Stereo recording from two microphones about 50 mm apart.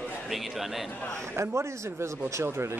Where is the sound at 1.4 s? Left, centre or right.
Right.